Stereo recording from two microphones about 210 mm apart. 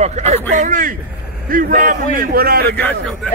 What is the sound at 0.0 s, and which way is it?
A man's voice, 30° right (ahead or behind).